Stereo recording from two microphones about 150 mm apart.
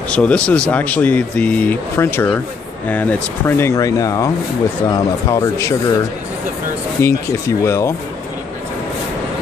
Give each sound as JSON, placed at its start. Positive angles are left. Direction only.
{"t": 0.1, "sound": "speech", "side_deg": 10}
{"t": 7.0, "sound": "speech", "side_deg": 20}